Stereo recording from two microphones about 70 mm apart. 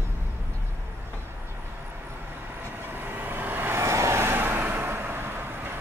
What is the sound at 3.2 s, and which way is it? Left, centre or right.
Vehicle, right.